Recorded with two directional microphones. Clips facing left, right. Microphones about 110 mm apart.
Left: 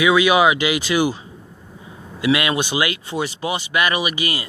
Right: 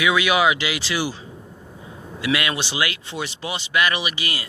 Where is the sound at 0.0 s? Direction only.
5° left (ahead or behind).